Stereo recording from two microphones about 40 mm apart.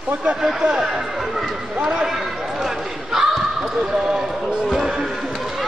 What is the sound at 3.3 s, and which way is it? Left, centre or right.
Basketball bounce, centre.